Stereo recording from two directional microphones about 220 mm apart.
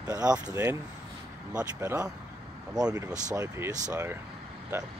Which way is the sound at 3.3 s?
15° right (ahead or behind).